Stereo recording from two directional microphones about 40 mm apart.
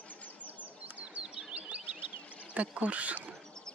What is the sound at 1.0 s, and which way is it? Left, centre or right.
Chirp, right.